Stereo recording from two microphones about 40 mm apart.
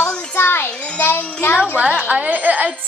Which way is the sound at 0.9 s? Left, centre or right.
Left.